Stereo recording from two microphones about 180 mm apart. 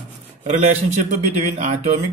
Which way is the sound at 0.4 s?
35° right (ahead or behind).